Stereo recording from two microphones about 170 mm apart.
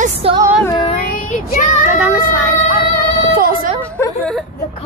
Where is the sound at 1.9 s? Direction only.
10° right (ahead or behind).